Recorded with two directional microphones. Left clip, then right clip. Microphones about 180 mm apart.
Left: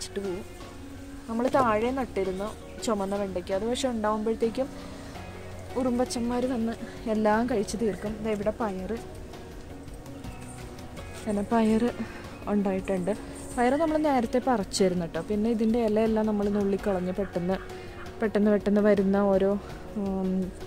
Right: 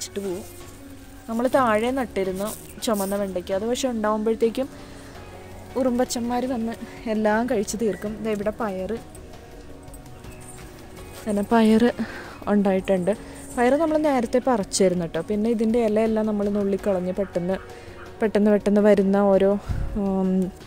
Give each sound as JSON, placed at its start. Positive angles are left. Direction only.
{"t": 0.2, "sound": "speech", "side_deg": -20}
{"t": 1.3, "sound": "a woman's voice", "side_deg": -35}
{"t": 5.8, "sound": "a woman's voice", "side_deg": -40}
{"t": 11.2, "sound": "speech", "side_deg": -35}